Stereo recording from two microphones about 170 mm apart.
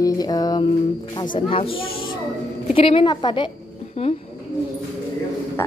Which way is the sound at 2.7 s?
30° left (ahead or behind).